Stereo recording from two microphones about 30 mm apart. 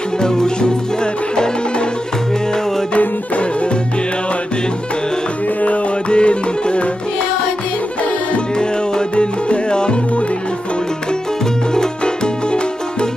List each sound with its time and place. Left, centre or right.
0.2 s music: left
6.0 s music: left
9.1 s music: left